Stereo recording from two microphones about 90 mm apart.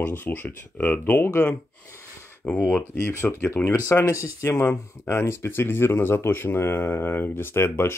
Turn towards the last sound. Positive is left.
turn(degrees=30)  # may be behind; listen again after turning